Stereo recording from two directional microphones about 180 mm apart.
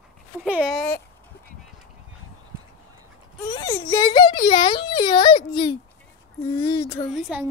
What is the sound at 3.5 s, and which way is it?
A child's voice, 15° left (ahead or behind).